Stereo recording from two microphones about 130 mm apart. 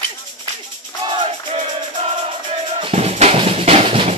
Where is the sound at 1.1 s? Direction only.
55° right (ahead or behind).